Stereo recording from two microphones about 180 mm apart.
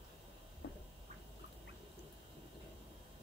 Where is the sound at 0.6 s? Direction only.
75° left (ahead or behind).